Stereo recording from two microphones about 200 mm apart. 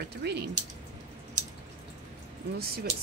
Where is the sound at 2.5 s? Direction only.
50° right (ahead or behind).